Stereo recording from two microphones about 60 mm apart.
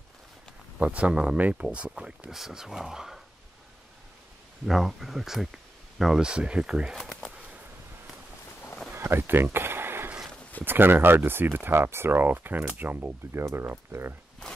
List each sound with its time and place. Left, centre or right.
0.7 s speech: right
4.6 s speech: centre
7.0 s a sound: centre
8.9 s a sound: right
10.6 s speech: right
13.4 s speech: right